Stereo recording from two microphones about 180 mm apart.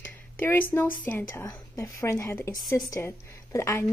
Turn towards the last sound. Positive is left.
turn(degrees=15)  # may be behind; listen again after turning